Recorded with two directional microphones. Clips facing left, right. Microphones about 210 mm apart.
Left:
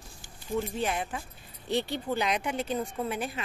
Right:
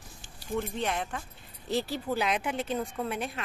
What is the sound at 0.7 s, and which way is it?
Speech, 5° left (ahead or behind).